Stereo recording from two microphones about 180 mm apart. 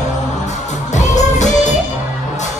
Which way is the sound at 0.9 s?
40° left (ahead or behind).